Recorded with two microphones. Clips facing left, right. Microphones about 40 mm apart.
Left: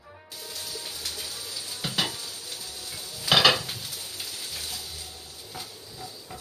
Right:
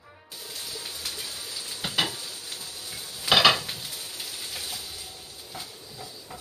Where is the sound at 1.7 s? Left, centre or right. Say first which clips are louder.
Right 2 dB; centre.